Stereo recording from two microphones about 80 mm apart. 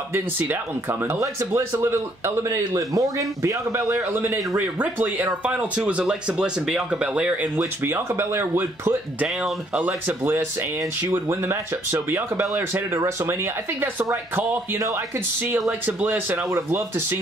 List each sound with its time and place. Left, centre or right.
1.0 s speech: right
4.7 s speech: right
7.8 s speech: right
9.4 s speech: centre
10.0 s speech: right
16.0 s speech: right